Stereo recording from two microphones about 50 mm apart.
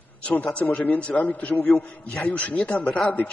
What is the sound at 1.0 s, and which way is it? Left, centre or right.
A man's voice, left.